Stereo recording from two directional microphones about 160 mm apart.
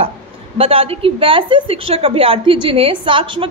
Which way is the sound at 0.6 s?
35° right (ahead or behind).